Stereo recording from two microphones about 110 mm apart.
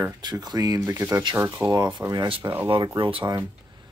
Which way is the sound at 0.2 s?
40° right (ahead or behind).